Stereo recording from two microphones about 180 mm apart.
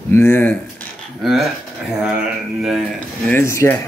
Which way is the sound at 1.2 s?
Centre (ahead or behind).